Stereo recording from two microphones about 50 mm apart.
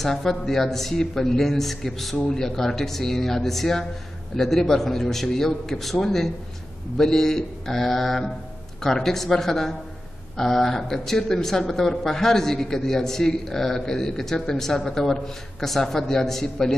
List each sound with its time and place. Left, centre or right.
0.0 s speech: centre